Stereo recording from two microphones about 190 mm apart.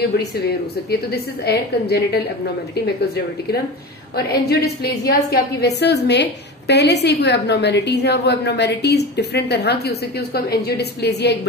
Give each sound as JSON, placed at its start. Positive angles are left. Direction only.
{"t": 0.8, "sound": "a woman's voice", "side_deg": 55}
{"t": 4.2, "sound": "a woman's voice", "side_deg": 55}